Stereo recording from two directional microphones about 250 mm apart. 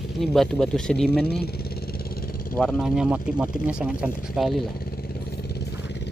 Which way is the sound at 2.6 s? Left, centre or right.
Centre.